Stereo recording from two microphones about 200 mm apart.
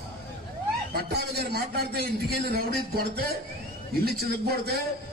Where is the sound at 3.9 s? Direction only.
50° right (ahead or behind).